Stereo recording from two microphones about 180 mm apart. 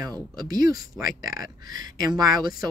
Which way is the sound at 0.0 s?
20° right (ahead or behind).